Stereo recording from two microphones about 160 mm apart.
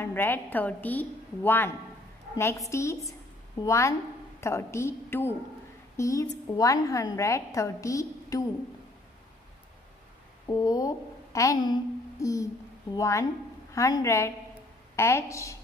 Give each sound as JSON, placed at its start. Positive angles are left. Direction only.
{"t": 0.0, "sound": "a woman's voice", "side_deg": 15}
{"t": 2.7, "sound": "a woman's voice", "side_deg": 20}
{"t": 10.4, "sound": "a child's voice", "side_deg": 20}